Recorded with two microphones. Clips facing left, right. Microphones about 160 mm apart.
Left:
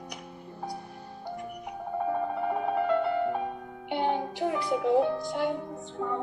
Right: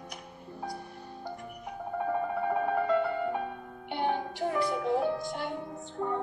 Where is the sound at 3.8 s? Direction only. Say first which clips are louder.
Left 2 dB; 15° left (ahead or behind).